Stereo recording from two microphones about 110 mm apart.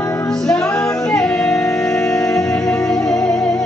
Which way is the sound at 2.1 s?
30° left (ahead or behind).